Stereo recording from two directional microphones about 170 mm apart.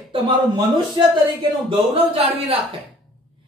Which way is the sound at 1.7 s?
35° right (ahead or behind).